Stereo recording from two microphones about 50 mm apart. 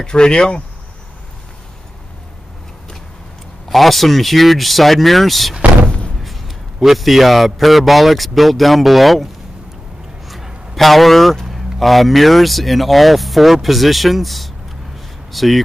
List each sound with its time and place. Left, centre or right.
0.0 s speech: centre
3.6 s speech: centre
5.9 s slam: left
6.2 s a man's voice: centre